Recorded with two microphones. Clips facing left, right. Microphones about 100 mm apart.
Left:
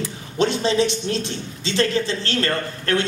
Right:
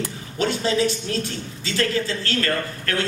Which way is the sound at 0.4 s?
20° left (ahead or behind).